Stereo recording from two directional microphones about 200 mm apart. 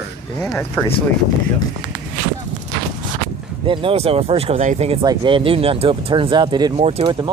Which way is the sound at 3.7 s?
25° right (ahead or behind).